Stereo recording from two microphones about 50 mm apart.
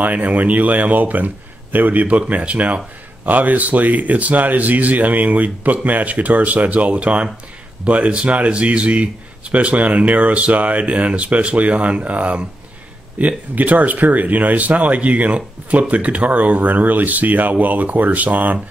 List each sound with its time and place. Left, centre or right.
0.0 s speech: right